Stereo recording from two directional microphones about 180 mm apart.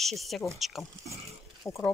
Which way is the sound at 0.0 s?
Centre (ahead or behind).